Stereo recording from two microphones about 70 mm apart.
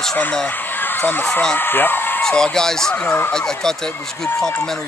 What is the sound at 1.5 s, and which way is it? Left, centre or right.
Speech, left.